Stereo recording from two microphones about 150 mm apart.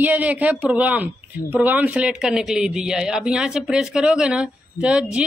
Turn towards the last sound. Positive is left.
turn(degrees=-5)  # may be behind; listen again after turning